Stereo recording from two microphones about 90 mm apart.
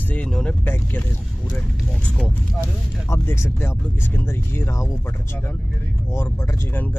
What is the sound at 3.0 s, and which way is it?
Speech, 25° left (ahead or behind).